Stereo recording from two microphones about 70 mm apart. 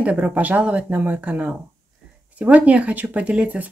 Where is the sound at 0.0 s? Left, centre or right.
Centre.